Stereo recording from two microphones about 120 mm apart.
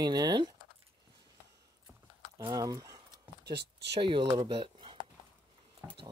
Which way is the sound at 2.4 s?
35° right (ahead or behind).